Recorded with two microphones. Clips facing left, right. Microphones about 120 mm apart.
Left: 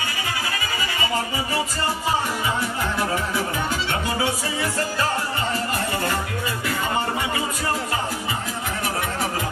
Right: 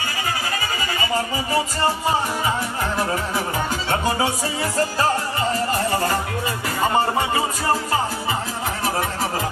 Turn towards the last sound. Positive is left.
turn(degrees=-35)  # may be behind; listen again after turning